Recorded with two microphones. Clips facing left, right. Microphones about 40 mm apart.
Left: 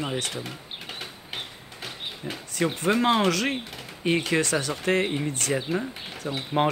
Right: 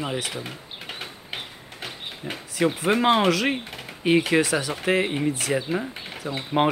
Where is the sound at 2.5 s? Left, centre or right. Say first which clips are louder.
Right 2 dB; centre.